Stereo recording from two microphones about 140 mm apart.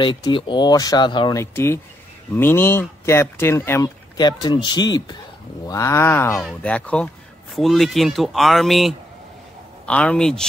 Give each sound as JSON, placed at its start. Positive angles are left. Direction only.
{"t": 0.0, "sound": "speech", "side_deg": 35}
{"t": 1.4, "sound": "speech", "side_deg": 20}
{"t": 4.2, "sound": "speech", "side_deg": 30}